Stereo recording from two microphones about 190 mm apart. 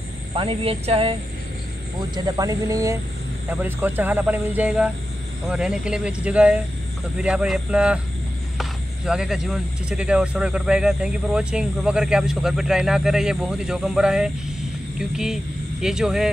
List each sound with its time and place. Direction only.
0.4 s speech: 30° right (ahead or behind); by 16.3 s 5° right (ahead or behind)